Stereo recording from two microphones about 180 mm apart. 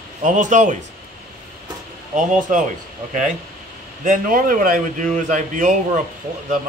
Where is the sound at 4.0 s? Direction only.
50° right (ahead or behind).